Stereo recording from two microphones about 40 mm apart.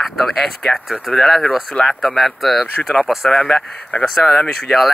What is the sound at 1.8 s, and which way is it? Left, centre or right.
Speech, left.